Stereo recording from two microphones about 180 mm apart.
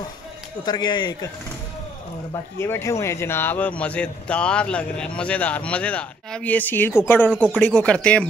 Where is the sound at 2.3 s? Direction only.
15° left (ahead or behind).